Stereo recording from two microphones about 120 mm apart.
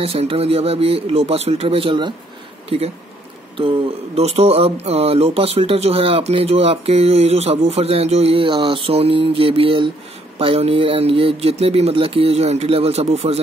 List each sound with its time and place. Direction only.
0.0 s speech: 55° right (ahead or behind)